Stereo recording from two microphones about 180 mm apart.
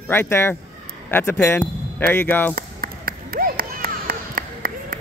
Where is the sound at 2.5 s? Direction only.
55° right (ahead or behind).